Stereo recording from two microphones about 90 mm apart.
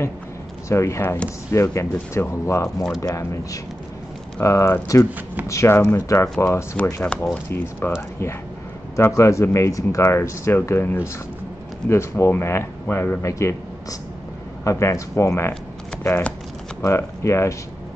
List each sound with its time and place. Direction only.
0.7 s speech: 35° left (ahead or behind)
2.6 s speech: 5° left (ahead or behind)
3.0 s speech: 35° left (ahead or behind)
4.4 s speech: 35° left (ahead or behind)
6.2 s speech: 10° left (ahead or behind)
7.4 s speech: 25° left (ahead or behind)
8.9 s speech: 35° left (ahead or behind)
13.2 s speech: 35° left (ahead or behind)
16.8 s speech: 35° left (ahead or behind)